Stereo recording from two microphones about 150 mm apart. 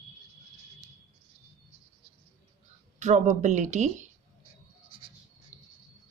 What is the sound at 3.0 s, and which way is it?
Speech, 55° right (ahead or behind).